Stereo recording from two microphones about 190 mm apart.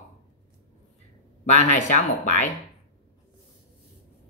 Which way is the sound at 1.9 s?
40° left (ahead or behind).